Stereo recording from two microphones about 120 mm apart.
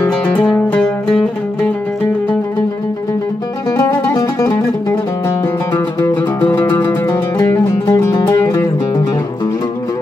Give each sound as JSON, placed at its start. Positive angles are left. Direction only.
{"t": 0.0, "sound": "music", "side_deg": 10}
{"t": 3.7, "sound": "music", "side_deg": 30}
{"t": 7.3, "sound": "music", "side_deg": 30}